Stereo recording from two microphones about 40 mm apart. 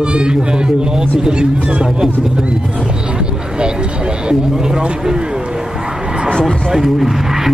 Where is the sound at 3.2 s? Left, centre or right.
Right.